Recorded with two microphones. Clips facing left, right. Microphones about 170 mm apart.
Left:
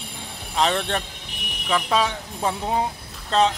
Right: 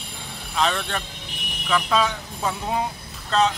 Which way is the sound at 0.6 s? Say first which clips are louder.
Left 2 dB; 25° left (ahead or behind).